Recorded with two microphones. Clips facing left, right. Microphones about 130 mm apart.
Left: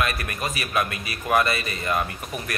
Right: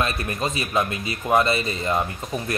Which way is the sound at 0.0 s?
25° right (ahead or behind).